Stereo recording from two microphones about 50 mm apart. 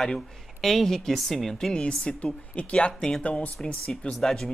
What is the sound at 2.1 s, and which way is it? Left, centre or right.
A man's voice, centre.